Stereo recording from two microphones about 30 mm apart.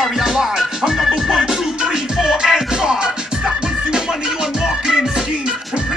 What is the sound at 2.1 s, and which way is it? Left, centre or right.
Music, centre.